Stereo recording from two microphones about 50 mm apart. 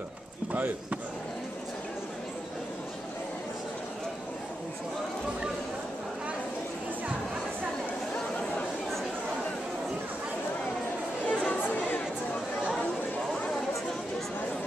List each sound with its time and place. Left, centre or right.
0.5 s speech: right
11.2 s chatter: left